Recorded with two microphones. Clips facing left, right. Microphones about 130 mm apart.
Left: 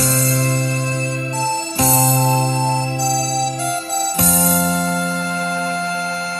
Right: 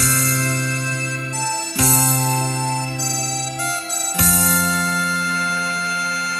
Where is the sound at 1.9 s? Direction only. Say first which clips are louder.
Left 6 dB; 25° left (ahead or behind).